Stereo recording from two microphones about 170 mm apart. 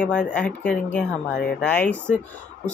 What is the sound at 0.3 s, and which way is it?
Speech, 10° left (ahead or behind).